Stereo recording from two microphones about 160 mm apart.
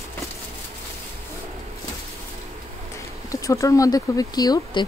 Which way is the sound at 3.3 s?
20° left (ahead or behind).